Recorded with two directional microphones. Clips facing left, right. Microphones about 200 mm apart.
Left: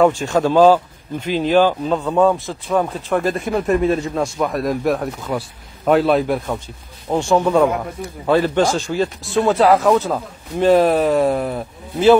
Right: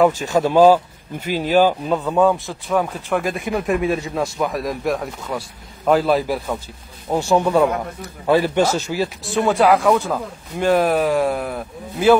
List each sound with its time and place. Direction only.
0.0 s speech: centre (ahead or behind)
0.4 s speech: 10° right (ahead or behind)
3.6 s speech: 15° right (ahead or behind)
4.0 s speech: centre (ahead or behind)